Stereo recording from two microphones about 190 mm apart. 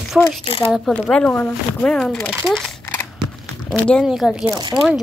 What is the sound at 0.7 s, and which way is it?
Speech, centre (ahead or behind).